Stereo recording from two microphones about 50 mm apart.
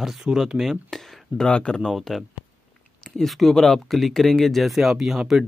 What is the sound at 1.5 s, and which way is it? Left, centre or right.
Speech, centre.